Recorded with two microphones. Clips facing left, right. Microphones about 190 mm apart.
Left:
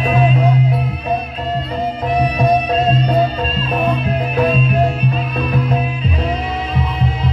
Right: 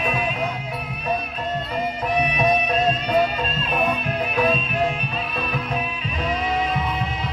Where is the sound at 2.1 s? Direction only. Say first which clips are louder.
Left 5 dB; 30° left (ahead or behind).